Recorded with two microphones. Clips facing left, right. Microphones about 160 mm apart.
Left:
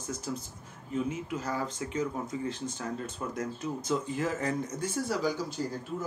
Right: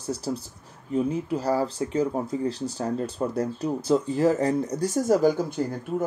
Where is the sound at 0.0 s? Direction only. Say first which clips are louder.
Right 7 dB; 35° right (ahead or behind).